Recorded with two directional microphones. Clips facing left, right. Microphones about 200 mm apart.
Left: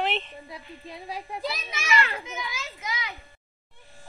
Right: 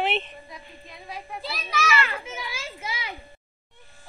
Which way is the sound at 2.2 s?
30° right (ahead or behind).